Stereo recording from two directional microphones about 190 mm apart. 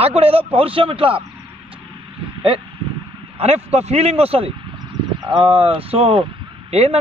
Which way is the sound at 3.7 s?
35° right (ahead or behind).